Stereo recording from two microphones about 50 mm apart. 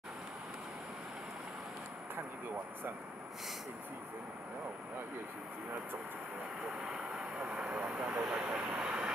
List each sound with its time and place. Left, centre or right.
6.8 s speech: centre
7.3 s speech: right
8.2 s speech: centre